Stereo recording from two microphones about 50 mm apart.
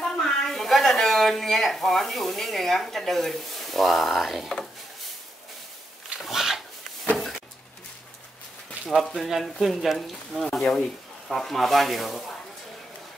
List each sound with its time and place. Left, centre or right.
0.0 s speech: centre
6.2 s a sound: centre
8.8 s speech: centre
9.1 s speech: centre